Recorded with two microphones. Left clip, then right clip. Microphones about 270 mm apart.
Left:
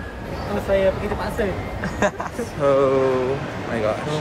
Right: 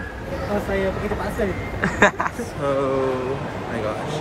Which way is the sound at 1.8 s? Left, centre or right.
Centre.